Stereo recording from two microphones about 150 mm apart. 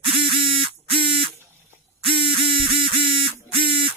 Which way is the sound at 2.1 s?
35° right (ahead or behind).